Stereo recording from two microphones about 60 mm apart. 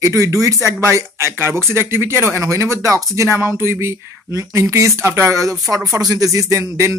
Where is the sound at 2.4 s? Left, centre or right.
Right.